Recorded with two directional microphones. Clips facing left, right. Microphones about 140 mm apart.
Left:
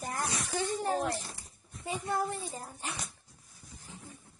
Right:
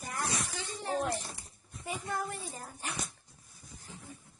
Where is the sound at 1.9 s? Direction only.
30° left (ahead or behind).